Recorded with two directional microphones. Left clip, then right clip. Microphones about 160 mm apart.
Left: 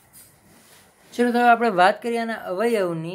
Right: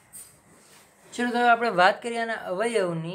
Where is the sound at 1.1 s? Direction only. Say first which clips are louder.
Left 4 dB; 30° left (ahead or behind).